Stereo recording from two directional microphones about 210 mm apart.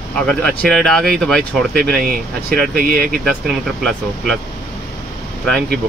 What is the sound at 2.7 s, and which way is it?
Speech, 45° right (ahead or behind).